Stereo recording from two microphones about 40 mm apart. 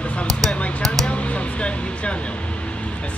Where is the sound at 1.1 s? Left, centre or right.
Left.